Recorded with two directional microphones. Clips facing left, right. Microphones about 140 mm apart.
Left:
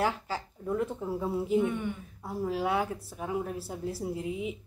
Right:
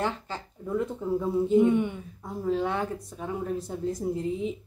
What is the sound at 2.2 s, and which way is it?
Speech, 5° left (ahead or behind).